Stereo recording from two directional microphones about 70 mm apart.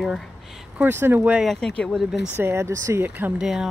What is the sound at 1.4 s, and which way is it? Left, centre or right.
Speech, centre.